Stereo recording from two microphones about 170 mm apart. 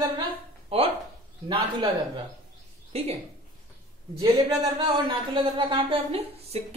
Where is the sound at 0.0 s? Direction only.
30° right (ahead or behind).